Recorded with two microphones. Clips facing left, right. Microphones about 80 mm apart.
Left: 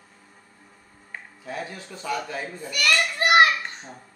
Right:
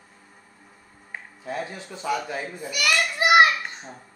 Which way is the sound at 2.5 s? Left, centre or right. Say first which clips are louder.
Left 1 dB; centre.